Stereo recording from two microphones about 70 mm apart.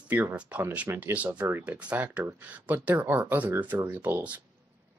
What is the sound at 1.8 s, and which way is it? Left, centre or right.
Speech, right.